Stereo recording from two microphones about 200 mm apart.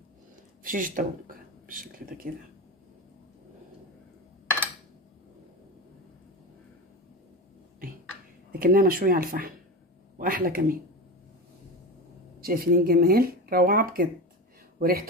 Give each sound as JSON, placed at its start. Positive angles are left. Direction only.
{"t": 0.7, "sound": "speech", "side_deg": -45}
{"t": 8.5, "sound": "speech", "side_deg": -45}
{"t": 12.4, "sound": "speech", "side_deg": -50}